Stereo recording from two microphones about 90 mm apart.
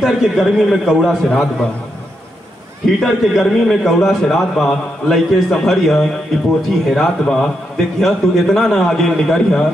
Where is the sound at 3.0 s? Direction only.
Centre (ahead or behind).